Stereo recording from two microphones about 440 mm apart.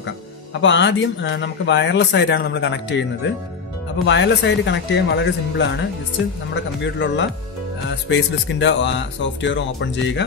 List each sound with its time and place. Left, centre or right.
0.6 s speech: left